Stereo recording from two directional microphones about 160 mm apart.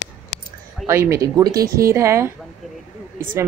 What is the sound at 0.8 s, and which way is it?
A woman's voice, 15° right (ahead or behind).